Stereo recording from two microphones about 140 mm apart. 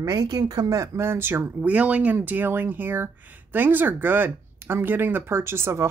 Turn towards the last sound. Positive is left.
turn(degrees=-20)  # may be behind; listen again after turning